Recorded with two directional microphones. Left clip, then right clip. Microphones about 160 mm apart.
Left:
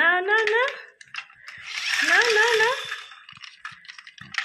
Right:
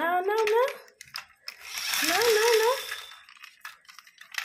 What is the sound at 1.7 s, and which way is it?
Ratchet, 70° right (ahead or behind).